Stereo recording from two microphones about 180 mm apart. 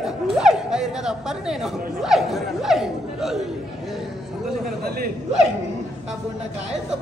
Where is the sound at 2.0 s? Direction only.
Centre (ahead or behind).